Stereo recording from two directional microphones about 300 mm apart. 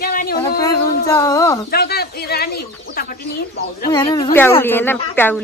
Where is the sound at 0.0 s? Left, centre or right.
Left.